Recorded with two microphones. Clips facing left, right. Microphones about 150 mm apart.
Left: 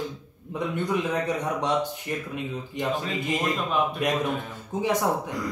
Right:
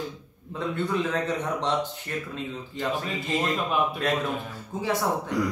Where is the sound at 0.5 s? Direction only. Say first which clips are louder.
Left 1 dB; 15° left (ahead or behind).